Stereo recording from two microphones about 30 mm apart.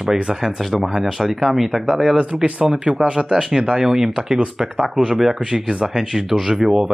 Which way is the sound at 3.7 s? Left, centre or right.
Centre.